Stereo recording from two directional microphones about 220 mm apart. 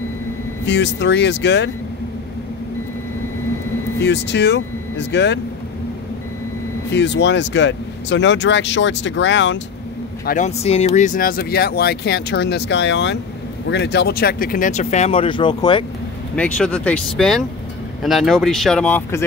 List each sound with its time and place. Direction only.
0.7 s speech: 55° left (ahead or behind)
4.0 s speech: 50° left (ahead or behind)
6.9 s speech: 50° left (ahead or behind)
10.2 s speech: 35° left (ahead or behind)
16.3 s speech: 5° left (ahead or behind)